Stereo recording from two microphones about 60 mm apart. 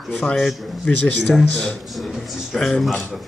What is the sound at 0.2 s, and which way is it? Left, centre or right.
Speech, centre.